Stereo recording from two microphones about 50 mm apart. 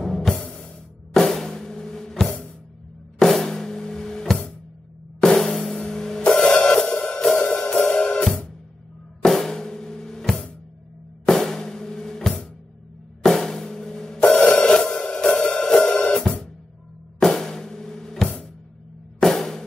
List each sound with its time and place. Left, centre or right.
0.0 s music: centre
1.1 s drum kit: centre
5.2 s music: centre
9.2 s drum kit: centre
13.2 s music: centre
15.3 s cymbal: centre
17.2 s drum kit: centre
19.1 s music: centre